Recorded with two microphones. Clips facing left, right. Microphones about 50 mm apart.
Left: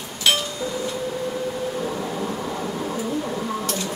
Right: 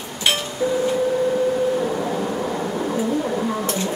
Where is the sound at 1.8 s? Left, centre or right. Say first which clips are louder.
Right 4 dB; centre.